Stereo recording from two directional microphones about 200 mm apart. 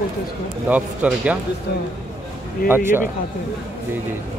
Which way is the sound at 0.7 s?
5° right (ahead or behind).